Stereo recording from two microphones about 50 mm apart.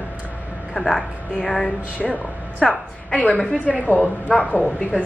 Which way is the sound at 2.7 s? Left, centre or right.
Left.